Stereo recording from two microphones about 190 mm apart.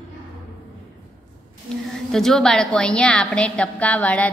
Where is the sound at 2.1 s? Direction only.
Centre (ahead or behind).